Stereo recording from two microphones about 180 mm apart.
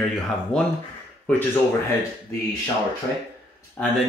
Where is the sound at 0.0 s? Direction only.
5° left (ahead or behind).